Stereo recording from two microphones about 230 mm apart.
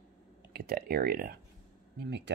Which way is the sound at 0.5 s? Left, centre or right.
Right.